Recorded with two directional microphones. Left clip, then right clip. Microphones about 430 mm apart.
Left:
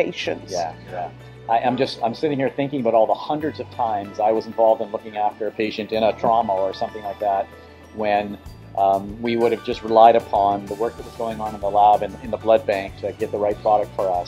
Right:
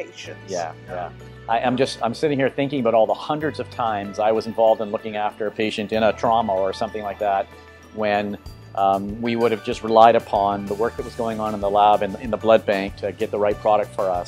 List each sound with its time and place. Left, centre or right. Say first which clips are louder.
0.0 s speech: left 11 dB; left
1.5 s speech: left 1 dB; right